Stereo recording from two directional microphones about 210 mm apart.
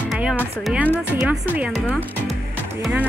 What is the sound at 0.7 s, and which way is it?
Speech, 10° right (ahead or behind).